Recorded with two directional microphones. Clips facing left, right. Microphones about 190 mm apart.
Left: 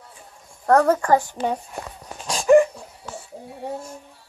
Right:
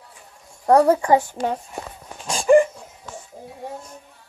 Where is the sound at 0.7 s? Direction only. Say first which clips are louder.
Right 2 dB; 10° right (ahead or behind).